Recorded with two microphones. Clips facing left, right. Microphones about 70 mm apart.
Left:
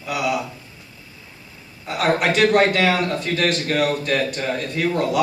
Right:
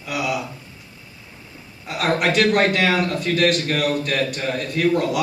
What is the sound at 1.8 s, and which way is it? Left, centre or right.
A man's voice, centre.